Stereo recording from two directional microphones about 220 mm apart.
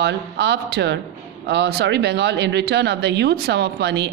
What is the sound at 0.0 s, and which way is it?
A woman's voice, 50° right (ahead or behind).